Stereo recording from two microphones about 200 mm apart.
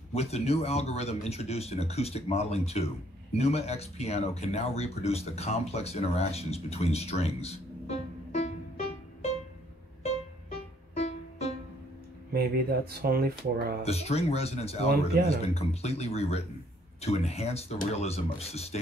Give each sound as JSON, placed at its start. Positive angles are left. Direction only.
{"t": 0.1, "sound": "speech", "side_deg": 30}
{"t": 10.0, "sound": "music", "side_deg": 30}
{"t": 12.3, "sound": "speech", "side_deg": -50}
{"t": 13.8, "sound": "speech", "side_deg": 30}